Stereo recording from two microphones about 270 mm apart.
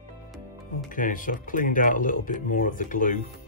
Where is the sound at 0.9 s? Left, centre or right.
Left.